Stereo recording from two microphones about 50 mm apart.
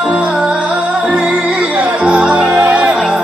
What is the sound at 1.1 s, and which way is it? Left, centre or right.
Music, centre.